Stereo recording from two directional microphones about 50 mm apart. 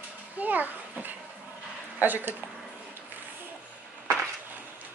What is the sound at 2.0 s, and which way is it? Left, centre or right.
Speech, right.